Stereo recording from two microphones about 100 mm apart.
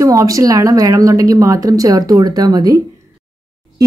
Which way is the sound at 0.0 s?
35° right (ahead or behind).